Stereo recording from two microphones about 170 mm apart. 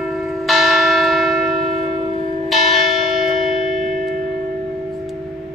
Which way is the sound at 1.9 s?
45° right (ahead or behind).